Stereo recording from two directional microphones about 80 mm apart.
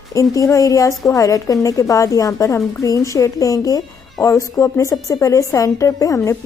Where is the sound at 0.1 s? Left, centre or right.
Left.